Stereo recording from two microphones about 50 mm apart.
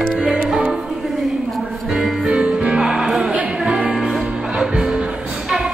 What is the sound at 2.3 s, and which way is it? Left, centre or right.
Music, right.